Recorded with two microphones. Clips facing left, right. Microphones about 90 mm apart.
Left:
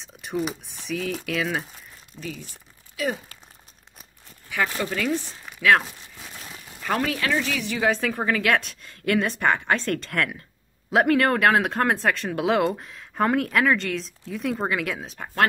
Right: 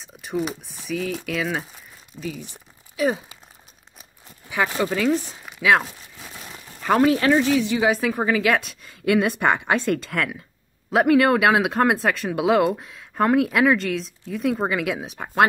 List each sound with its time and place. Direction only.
0.0 s speech: centre (ahead or behind)
2.4 s crumpling: 20° right (ahead or behind)
4.7 s crumpling: 15° right (ahead or behind)
7.1 s speech: 30° right (ahead or behind)
7.8 s speech: 10° right (ahead or behind)
15.0 s speech: 15° right (ahead or behind)